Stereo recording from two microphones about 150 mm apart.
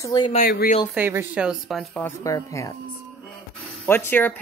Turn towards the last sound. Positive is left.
turn(degrees=15)  # may be behind; listen again after turning